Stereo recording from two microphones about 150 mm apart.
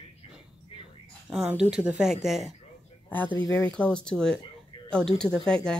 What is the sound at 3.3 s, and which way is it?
Speech, 25° left (ahead or behind).